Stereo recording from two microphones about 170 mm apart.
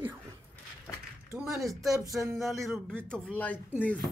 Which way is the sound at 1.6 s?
Centre (ahead or behind).